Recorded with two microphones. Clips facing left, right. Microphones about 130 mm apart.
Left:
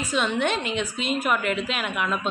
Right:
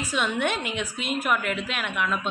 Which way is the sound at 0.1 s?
5° right (ahead or behind).